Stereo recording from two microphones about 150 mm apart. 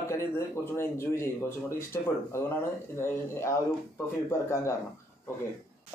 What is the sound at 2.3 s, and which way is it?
Speech, 15° left (ahead or behind).